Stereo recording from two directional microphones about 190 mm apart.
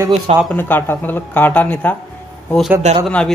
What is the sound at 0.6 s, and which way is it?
Speech, 10° left (ahead or behind).